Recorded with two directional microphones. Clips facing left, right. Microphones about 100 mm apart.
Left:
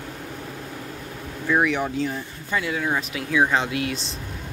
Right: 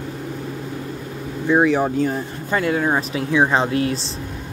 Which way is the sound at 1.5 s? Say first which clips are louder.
Right 5 dB; 30° right (ahead or behind).